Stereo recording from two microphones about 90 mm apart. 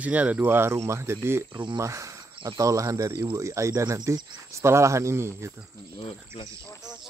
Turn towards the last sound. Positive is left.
turn(degrees=90)